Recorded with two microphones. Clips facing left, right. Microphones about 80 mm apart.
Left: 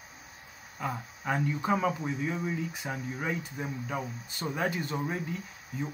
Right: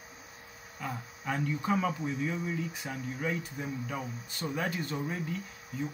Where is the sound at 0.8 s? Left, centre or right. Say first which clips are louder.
Left 4 dB; centre.